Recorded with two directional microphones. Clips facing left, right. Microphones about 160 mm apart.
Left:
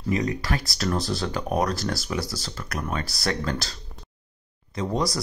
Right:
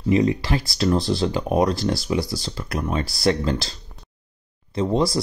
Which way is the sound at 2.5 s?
30° right (ahead or behind).